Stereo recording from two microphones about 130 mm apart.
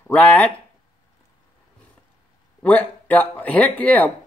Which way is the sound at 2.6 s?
10° left (ahead or behind).